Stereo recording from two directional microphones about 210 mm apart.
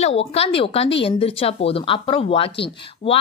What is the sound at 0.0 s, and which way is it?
A woman's voice, 30° left (ahead or behind).